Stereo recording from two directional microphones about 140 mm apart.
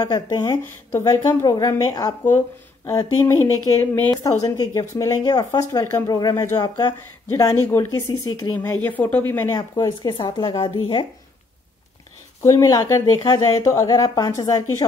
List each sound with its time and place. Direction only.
0.0 s speech: 30° left (ahead or behind)
8.8 s speech: 10° left (ahead or behind)
9.6 s speech: 30° left (ahead or behind)
12.4 s speech: 25° left (ahead or behind)